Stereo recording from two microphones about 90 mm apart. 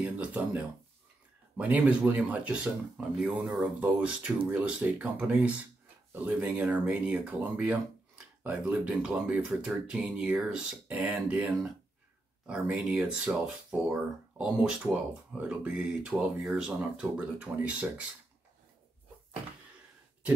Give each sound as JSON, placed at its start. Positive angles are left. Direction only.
{"t": 0.0, "sound": "speech", "side_deg": -15}